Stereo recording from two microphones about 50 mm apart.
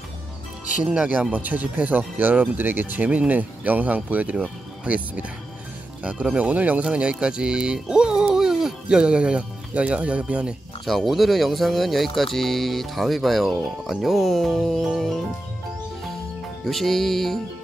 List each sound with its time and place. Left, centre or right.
1.3 s speech: right
6.3 s speech: right
10.9 s speech: centre
16.6 s speech: centre